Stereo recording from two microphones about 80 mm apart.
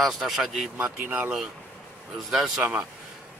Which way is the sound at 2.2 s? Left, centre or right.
Centre.